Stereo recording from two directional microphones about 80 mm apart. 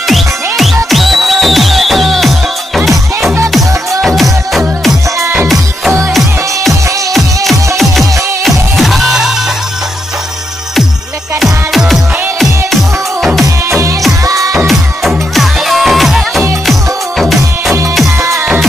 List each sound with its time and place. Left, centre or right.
0.8 s music: centre
4.0 s music: centre
6.1 s music: centre
11.4 s music: centre
14.2 s music: right
14.7 s music: centre